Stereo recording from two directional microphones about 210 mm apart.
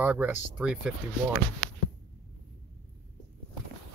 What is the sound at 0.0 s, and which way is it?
Speech, 5° right (ahead or behind).